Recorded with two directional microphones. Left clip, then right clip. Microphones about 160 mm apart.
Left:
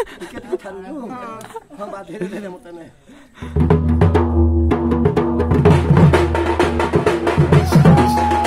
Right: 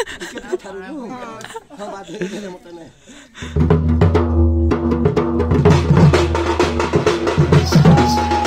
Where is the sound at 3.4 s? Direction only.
10° left (ahead or behind).